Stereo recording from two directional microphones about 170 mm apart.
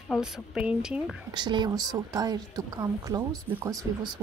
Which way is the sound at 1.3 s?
25° right (ahead or behind).